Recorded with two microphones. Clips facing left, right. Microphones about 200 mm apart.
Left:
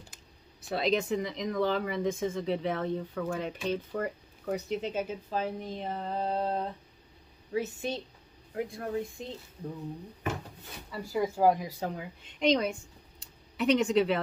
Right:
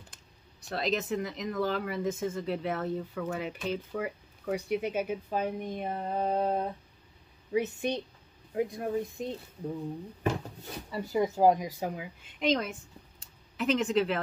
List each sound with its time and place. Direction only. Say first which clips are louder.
0.1 s a woman's voice: left 2 dB; centre (ahead or behind); by 9.3 s 20° right (ahead or behind)
10.9 s a woman's voice: right 2 dB; 20° right (ahead or behind); by 14.2 s centre (ahead or behind)